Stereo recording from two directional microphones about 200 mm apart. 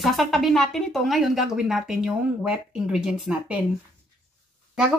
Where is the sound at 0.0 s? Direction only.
Centre (ahead or behind).